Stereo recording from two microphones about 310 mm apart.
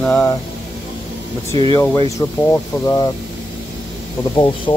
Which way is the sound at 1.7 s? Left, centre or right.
Centre.